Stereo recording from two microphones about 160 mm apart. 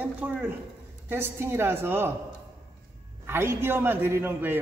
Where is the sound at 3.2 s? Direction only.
15° right (ahead or behind).